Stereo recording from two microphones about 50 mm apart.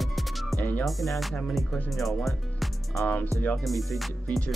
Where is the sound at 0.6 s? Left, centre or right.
Left.